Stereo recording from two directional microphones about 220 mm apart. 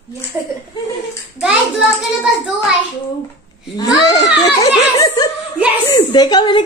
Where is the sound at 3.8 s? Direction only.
15° left (ahead or behind).